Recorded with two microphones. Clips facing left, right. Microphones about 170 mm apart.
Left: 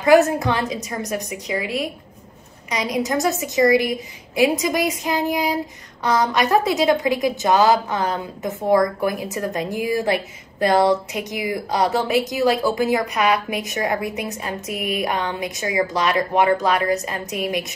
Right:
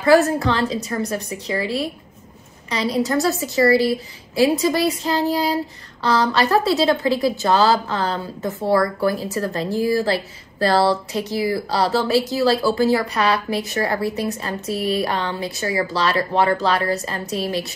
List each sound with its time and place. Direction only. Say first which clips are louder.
0.3 s a woman's voice: right 2 dB; 15° left (ahead or behind)
2.7 s a woman's voice: right 2 dB; 15° left (ahead or behind)
14.7 s a sound: right 5 dB; 35° right (ahead or behind)
15.0 s a woman's voice: right 1 dB; 15° left (ahead or behind)